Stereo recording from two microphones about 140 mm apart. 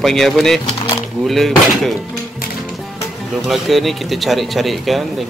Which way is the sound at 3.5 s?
Centre (ahead or behind).